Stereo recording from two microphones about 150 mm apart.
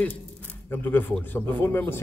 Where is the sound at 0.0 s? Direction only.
10° left (ahead or behind).